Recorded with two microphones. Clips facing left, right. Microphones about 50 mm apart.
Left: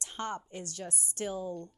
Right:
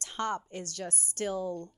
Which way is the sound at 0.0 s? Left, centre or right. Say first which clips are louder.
Right 4 dB; right.